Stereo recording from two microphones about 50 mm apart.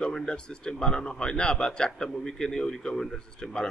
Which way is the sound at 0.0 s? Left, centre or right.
Centre.